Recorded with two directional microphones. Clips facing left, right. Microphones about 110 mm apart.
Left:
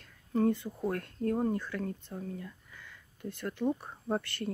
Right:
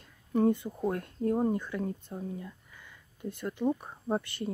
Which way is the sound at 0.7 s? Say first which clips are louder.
Right 2 dB; 15° right (ahead or behind).